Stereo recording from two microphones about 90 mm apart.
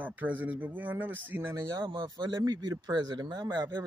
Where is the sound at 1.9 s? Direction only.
55° right (ahead or behind).